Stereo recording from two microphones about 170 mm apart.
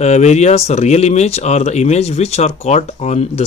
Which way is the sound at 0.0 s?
40° left (ahead or behind).